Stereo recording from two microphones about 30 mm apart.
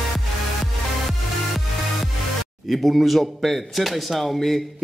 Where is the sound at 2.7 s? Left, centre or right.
Centre.